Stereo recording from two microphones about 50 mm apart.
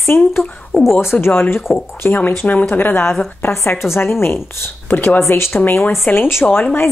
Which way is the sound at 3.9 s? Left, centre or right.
Left.